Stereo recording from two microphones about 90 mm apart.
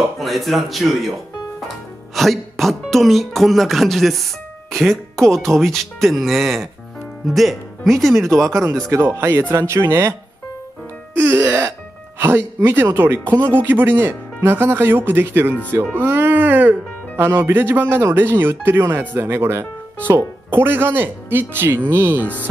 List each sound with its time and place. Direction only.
0.2 s speech: centre (ahead or behind)
9.0 s speech: 25° right (ahead or behind)
11.1 s music: 25° right (ahead or behind)
12.2 s speech: 25° right (ahead or behind)